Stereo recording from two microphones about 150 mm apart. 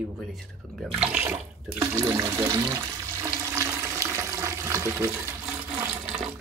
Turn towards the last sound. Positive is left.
turn(degrees=-10)  # may be behind; listen again after turning